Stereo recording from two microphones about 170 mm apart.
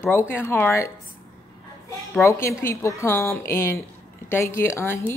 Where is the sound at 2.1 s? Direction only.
15° left (ahead or behind).